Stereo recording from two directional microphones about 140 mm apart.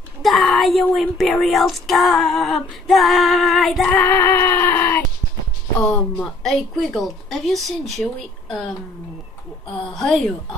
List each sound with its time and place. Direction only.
0.2 s a sound: centre (ahead or behind)
0.9 s speech: centre (ahead or behind)
4.0 s synthetic singing: 15° left (ahead or behind)
5.8 s speech: 10° left (ahead or behind)
9.9 s speech: centre (ahead or behind)